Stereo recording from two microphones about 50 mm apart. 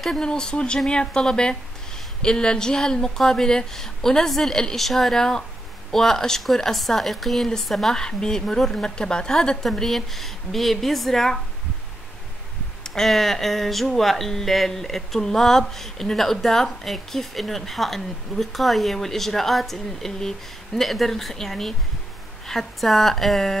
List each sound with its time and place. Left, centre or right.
0.2 s speech: centre
12.8 s speech: centre